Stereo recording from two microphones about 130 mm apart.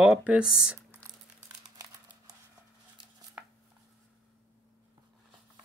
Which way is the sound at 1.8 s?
30° right (ahead or behind).